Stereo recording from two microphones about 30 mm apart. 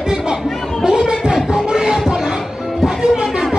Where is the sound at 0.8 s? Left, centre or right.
Right.